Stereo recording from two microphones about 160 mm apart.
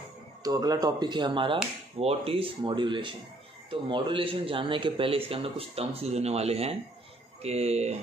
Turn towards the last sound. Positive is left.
turn(degrees=-45)  # may be behind; listen again after turning